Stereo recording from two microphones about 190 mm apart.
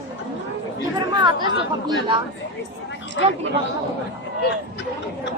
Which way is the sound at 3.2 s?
75° left (ahead or behind).